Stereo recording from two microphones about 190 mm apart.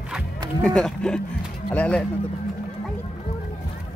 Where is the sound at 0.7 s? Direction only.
5° left (ahead or behind).